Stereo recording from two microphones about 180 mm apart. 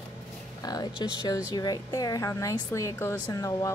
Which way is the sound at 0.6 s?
20° left (ahead or behind).